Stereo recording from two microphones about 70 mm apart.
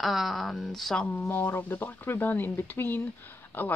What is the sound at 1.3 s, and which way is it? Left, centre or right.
Speech, left.